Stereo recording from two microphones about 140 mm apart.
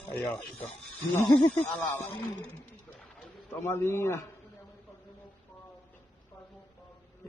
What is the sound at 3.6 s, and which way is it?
Speech, 15° left (ahead or behind).